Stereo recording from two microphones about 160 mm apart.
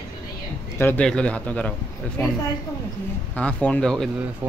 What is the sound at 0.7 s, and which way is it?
A man's voice, 10° left (ahead or behind).